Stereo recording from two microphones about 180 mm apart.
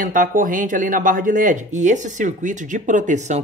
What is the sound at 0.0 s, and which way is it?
Speech, 45° right (ahead or behind).